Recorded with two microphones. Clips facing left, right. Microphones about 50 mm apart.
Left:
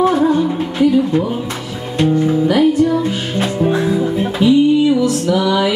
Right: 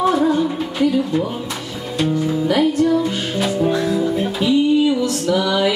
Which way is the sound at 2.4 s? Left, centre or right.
Centre.